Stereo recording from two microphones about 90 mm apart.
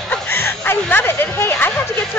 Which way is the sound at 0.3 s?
25° left (ahead or behind).